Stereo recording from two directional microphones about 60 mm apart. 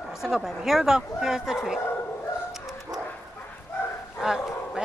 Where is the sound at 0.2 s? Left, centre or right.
Centre.